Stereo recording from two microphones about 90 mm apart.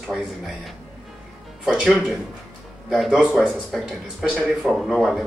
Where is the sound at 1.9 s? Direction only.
5° left (ahead or behind).